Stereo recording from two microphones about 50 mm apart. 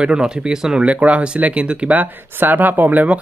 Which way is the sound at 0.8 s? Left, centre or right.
Right.